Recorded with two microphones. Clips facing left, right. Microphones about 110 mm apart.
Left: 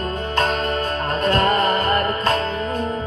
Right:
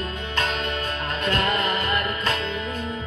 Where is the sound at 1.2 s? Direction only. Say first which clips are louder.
Left 6 dB; 40° left (ahead or behind).